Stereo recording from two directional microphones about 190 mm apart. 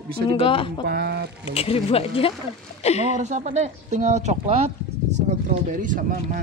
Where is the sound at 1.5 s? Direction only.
30° left (ahead or behind).